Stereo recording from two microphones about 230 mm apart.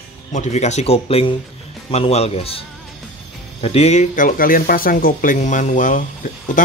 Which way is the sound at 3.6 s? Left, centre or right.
Left.